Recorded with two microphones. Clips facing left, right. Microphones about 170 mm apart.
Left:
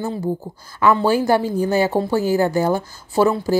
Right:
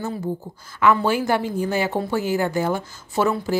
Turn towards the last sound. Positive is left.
turn(degrees=30)  # may be behind; listen again after turning